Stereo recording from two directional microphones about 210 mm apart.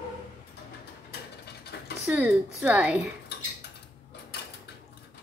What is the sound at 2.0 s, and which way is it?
Speech, 10° right (ahead or behind).